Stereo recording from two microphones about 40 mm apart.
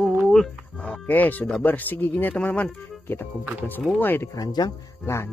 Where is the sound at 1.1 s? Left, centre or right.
Left.